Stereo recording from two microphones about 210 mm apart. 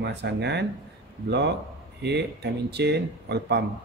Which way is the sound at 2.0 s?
55° right (ahead or behind).